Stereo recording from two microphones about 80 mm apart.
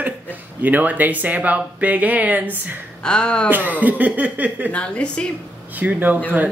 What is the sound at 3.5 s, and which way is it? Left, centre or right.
Speech, right.